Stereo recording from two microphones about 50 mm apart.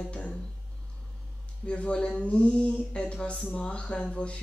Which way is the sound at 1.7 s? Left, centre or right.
Left.